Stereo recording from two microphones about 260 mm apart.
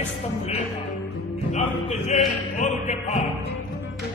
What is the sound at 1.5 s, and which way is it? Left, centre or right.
Speech, left.